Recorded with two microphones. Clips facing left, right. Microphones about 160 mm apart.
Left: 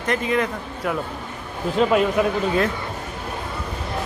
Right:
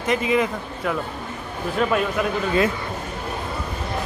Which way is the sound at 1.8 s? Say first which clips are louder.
Left 4 dB; 20° left (ahead or behind).